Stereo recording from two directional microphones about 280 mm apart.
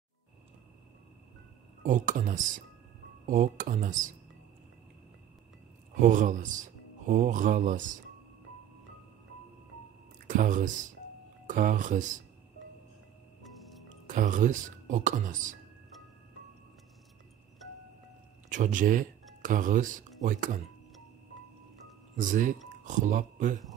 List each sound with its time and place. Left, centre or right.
1.8 s speech: right
5.9 s speech: right
10.2 s speech: right
13.4 s music: centre
13.8 s speech: right
18.5 s speech: right
22.1 s speech: right